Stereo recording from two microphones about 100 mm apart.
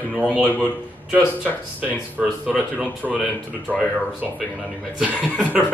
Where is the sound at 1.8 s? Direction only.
15° right (ahead or behind).